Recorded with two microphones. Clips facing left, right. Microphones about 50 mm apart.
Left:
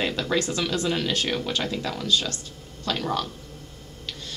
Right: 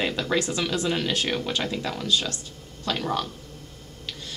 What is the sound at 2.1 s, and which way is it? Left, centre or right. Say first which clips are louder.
Speech: left 1 dB; right.